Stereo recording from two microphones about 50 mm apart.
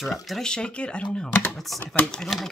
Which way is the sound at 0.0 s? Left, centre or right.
Centre.